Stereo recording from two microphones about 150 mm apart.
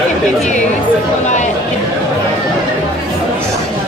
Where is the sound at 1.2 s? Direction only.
55° left (ahead or behind).